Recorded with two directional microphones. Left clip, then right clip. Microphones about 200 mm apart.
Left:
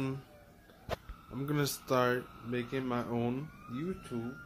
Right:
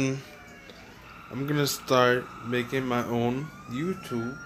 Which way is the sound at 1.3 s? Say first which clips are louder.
Right 7 dB; 10° left (ahead or behind).